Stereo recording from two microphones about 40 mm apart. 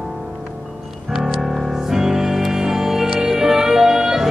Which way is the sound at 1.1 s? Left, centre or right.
Centre.